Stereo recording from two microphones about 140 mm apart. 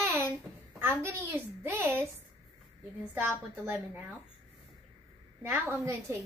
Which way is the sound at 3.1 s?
15° right (ahead or behind).